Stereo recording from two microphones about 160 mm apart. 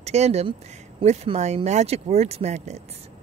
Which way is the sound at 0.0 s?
45° right (ahead or behind).